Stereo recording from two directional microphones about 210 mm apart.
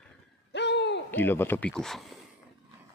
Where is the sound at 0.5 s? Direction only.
55° left (ahead or behind).